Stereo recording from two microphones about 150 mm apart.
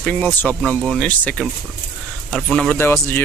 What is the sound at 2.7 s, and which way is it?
Speech, 15° left (ahead or behind).